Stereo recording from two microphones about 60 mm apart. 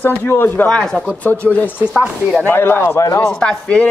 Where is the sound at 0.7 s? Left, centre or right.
Centre.